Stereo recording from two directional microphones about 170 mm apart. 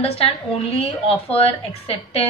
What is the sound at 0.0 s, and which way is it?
Speech, 35° left (ahead or behind).